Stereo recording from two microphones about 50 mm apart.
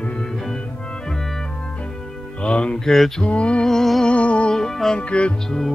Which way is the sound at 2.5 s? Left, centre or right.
Left.